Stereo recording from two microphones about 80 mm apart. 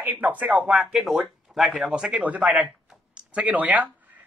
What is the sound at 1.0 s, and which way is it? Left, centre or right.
Speech, centre.